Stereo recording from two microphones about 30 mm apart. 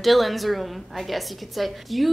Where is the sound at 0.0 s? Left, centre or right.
Centre.